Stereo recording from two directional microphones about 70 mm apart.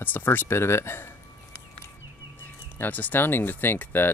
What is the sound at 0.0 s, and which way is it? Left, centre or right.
Speech, left.